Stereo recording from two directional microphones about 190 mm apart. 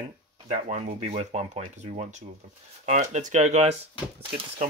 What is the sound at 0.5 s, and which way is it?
Speech, 35° right (ahead or behind).